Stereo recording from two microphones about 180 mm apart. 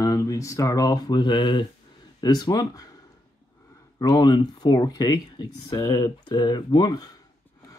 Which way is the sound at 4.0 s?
20° left (ahead or behind).